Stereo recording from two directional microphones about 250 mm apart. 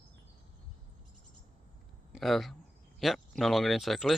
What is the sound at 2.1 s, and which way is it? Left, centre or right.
Speech, centre.